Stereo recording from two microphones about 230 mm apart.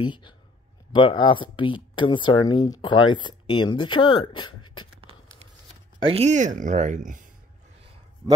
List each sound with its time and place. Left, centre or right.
0.0 s speech: centre
6.0 s speech: right